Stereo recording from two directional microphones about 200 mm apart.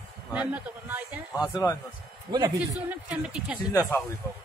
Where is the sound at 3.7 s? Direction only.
15° left (ahead or behind).